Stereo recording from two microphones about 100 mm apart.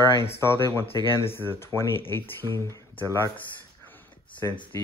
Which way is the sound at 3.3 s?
20° left (ahead or behind).